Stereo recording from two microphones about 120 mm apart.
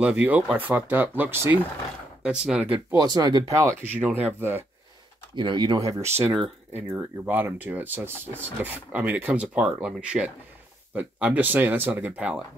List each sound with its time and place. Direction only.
0.0 s speech: 10° right (ahead or behind)
3.0 s speech: 35° right (ahead or behind)
4.1 s speech: 15° right (ahead or behind)
5.3 s speech: 40° right (ahead or behind); by 12.4 s 10° right (ahead or behind)